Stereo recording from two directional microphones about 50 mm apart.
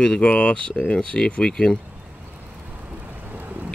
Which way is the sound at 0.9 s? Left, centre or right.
Centre.